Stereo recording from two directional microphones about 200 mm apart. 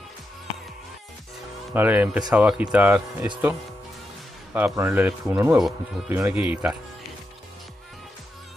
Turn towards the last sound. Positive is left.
turn(degrees=-5)  # may be behind; listen again after turning